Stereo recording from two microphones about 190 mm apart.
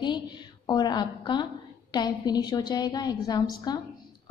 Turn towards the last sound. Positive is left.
turn(degrees=20)  # may be behind; listen again after turning